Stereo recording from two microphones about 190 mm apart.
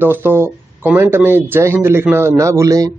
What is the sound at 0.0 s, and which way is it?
Speech, 10° right (ahead or behind).